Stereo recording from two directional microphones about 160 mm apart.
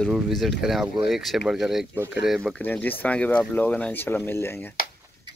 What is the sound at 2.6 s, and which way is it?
Speech, 10° left (ahead or behind).